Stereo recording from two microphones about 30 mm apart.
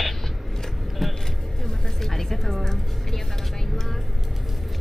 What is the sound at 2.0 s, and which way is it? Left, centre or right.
Music, centre.